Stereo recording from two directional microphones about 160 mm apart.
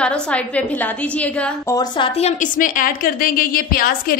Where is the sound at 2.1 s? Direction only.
45° left (ahead or behind).